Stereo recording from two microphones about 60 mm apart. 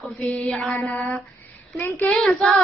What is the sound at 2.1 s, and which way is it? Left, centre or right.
Mantra, centre.